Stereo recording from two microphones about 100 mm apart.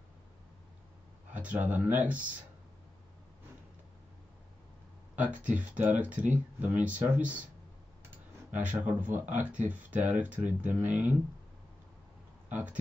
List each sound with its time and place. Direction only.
1.3 s speech: 15° right (ahead or behind)
5.2 s speech: 15° right (ahead or behind)
8.5 s speech: 15° right (ahead or behind)
12.4 s speech: 20° right (ahead or behind)